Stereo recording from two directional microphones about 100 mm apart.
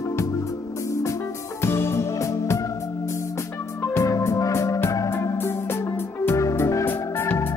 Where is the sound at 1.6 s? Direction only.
25° left (ahead or behind).